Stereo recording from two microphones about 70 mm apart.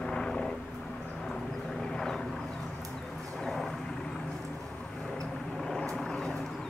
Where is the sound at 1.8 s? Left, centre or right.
Centre.